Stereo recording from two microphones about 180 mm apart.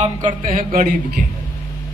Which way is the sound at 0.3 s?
35° right (ahead or behind).